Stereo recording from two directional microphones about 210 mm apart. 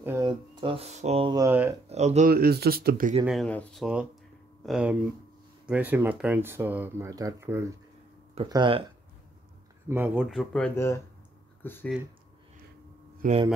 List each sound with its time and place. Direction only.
0.0 s speech: 15° right (ahead or behind)
1.9 s speech: 35° right (ahead or behind)
2.3 s speech: 45° right (ahead or behind)
3.3 s speech: 5° left (ahead or behind)
8.4 s speech: 20° right (ahead or behind)
9.8 s speech: 10° right (ahead or behind)
10.3 s speech: centre (ahead or behind)
13.2 s speech: 30° right (ahead or behind)